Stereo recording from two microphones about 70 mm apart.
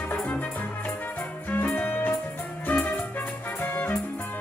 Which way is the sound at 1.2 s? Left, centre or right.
Left.